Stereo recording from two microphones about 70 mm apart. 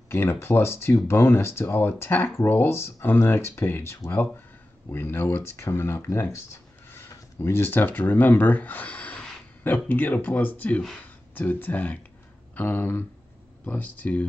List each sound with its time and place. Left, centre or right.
0.1 s speech: left